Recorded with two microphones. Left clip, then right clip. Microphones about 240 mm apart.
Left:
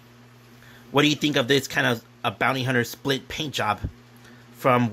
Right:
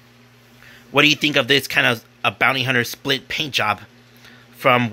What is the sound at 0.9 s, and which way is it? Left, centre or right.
Speech, centre.